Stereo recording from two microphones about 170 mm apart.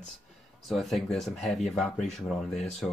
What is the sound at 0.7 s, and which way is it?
Speech, centre (ahead or behind).